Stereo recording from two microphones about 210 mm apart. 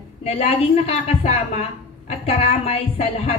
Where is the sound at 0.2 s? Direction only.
30° left (ahead or behind).